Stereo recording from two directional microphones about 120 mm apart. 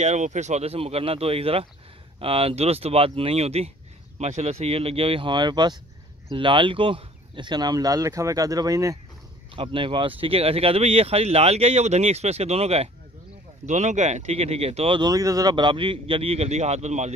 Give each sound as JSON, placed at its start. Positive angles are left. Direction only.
{"t": 0.0, "sound": "speech", "side_deg": -85}
{"t": 9.6, "sound": "speech", "side_deg": -45}
{"t": 13.7, "sound": "speech", "side_deg": -85}
{"t": 15.0, "sound": "speech", "side_deg": -30}